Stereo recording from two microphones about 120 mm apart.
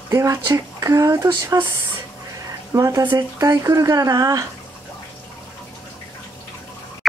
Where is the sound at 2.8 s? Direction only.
30° right (ahead or behind).